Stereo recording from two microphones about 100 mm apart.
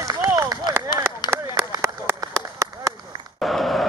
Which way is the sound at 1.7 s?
25° right (ahead or behind).